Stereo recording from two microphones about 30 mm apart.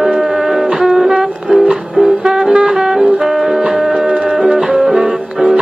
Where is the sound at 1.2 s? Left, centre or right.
Centre.